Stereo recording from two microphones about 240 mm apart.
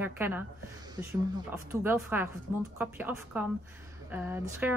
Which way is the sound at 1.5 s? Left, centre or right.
Centre.